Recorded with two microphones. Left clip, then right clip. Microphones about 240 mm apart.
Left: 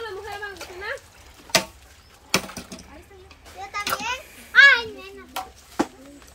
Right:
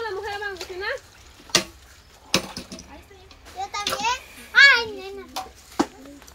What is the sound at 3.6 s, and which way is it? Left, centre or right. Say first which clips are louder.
Children playing: right 2 dB; right.